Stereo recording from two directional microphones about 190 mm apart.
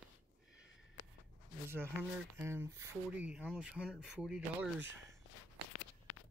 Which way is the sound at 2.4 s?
15° right (ahead or behind).